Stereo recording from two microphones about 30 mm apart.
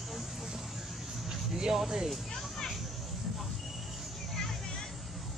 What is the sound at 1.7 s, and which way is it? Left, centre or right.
Speech, centre.